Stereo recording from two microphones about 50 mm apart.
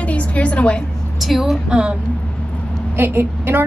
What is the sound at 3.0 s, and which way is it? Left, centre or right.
Speech, right.